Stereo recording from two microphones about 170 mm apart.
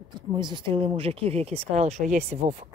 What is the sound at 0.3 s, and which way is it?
Speech, 25° right (ahead or behind).